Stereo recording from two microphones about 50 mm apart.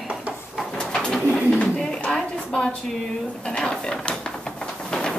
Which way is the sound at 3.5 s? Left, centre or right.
Centre.